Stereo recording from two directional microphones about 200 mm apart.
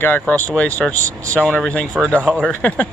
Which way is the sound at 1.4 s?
5° left (ahead or behind).